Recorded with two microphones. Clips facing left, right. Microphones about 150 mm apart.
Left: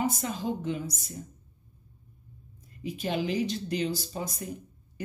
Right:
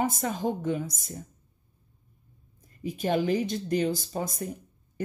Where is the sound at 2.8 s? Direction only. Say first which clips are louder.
Right 4 dB; 45° right (ahead or behind).